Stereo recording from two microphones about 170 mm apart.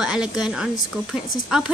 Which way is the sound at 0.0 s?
5° right (ahead or behind).